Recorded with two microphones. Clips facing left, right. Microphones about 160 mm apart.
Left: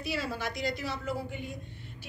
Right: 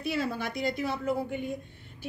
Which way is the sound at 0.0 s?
55° right (ahead or behind).